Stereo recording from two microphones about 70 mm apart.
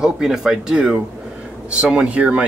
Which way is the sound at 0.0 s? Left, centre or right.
Centre.